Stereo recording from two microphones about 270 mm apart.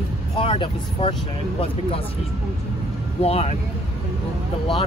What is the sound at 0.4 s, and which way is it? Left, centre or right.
Speech, centre.